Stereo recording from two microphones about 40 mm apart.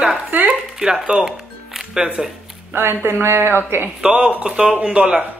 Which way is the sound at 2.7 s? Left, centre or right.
Right.